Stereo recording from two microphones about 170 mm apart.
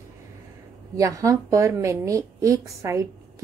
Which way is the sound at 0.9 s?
20° right (ahead or behind).